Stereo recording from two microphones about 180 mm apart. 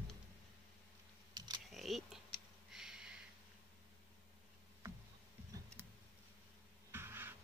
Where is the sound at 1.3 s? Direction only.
20° right (ahead or behind).